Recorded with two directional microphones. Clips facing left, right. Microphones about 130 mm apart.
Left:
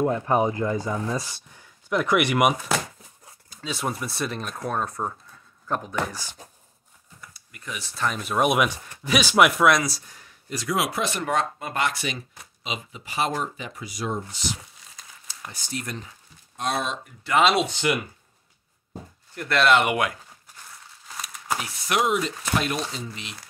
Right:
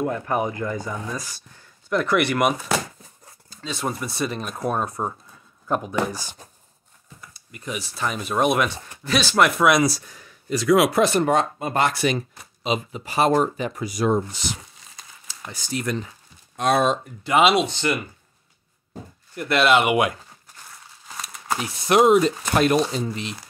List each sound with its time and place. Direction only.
0.0 s speech: 25° left (ahead or behind)
1.5 s speech: 15° left (ahead or behind); by 6.3 s 15° right (ahead or behind)
7.3 s speech: 20° right (ahead or behind); by 9.5 s 10° left (ahead or behind)
9.6 s speech: 5° right (ahead or behind)
10.6 s speech: 90° right
10.9 s speech: 45° right (ahead or behind)
11.1 s speech: 25° right (ahead or behind); by 14.4 s 55° right (ahead or behind)
15.2 s speech: 90° right
16.5 s speech: 60° right (ahead or behind)
17.2 s speech: 15° right (ahead or behind)
17.6 s speech: 10° left (ahead or behind)
19.3 s speech: 5° right (ahead or behind)
21.5 s speech: 30° right (ahead or behind)